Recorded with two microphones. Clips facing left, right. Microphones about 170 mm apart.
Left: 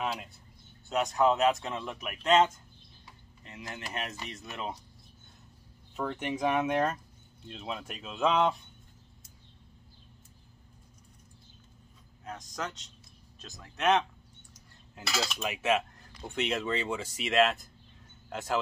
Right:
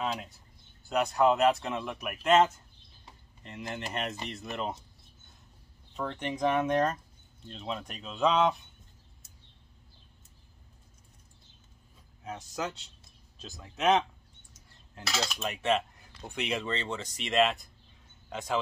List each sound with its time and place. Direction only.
0.8 s speech: centre (ahead or behind)
5.9 s speech: 10° left (ahead or behind)
12.3 s speech: 5° right (ahead or behind)